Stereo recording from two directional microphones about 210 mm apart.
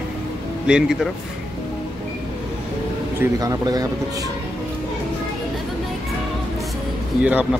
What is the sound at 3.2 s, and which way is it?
Speech, 15° right (ahead or behind).